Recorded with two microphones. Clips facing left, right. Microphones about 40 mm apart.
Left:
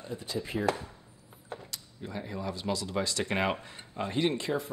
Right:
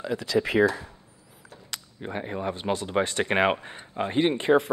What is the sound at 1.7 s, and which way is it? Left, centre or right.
Speech, right.